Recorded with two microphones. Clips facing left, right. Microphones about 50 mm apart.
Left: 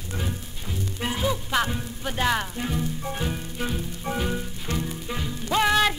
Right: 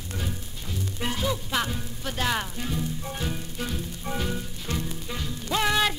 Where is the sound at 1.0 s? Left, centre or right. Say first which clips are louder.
Left 2 dB; centre.